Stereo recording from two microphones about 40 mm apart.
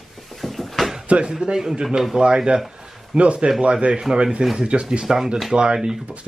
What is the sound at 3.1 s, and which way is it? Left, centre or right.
Speech, right.